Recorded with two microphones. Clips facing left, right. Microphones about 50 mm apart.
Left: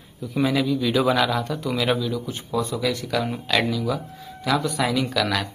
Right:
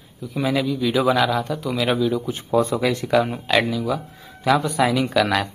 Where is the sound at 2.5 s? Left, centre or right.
Right.